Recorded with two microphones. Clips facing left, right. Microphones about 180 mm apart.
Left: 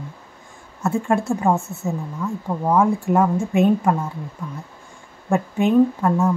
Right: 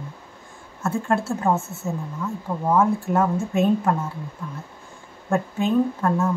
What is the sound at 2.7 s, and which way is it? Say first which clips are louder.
A woman's voice: left 2 dB; 15° left (ahead or behind).